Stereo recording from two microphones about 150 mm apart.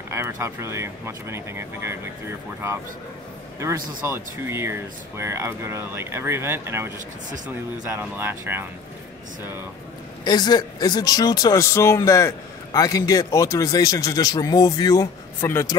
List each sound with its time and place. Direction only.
0.1 s speech: 20° right (ahead or behind)
3.5 s speech: 20° right (ahead or behind)
10.2 s speech: 25° left (ahead or behind)